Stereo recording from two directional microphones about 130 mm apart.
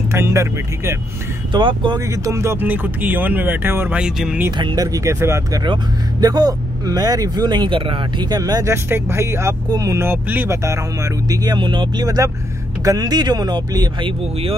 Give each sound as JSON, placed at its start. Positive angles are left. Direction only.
{"t": 0.1, "sound": "speech", "side_deg": -20}
{"t": 1.5, "sound": "speech", "side_deg": -35}
{"t": 2.0, "sound": "speech", "side_deg": -25}
{"t": 4.0, "sound": "speech", "side_deg": -5}
{"t": 4.5, "sound": "speech", "side_deg": -35}